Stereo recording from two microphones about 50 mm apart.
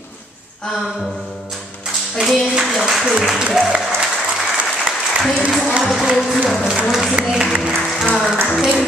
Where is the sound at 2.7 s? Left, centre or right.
Centre.